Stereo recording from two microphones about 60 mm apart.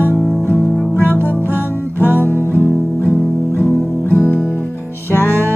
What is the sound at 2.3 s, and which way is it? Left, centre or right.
Music, left.